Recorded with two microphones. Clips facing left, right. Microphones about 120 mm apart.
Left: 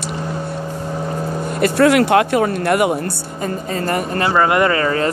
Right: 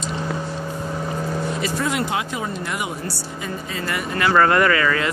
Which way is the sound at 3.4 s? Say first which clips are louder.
Left 8 dB; 45° left (ahead or behind).